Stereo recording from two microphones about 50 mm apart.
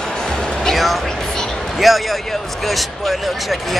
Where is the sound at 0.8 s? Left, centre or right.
Centre.